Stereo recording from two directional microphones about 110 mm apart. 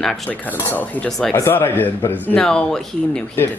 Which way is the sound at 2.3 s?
5° left (ahead or behind).